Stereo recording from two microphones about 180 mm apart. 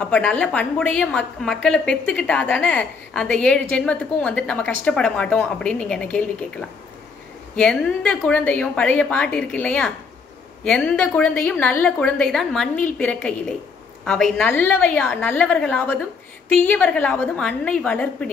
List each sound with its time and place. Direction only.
0.0 s a woman's voice: 5° left (ahead or behind)